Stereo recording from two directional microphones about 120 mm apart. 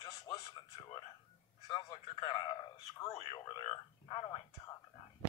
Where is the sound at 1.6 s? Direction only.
40° left (ahead or behind).